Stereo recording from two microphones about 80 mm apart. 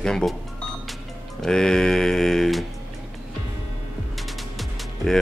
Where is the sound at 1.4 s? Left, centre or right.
Centre.